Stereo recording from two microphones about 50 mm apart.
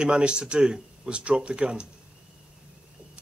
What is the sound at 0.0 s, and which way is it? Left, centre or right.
Speech, centre.